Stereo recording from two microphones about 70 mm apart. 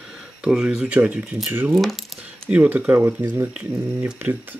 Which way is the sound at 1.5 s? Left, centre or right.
Right.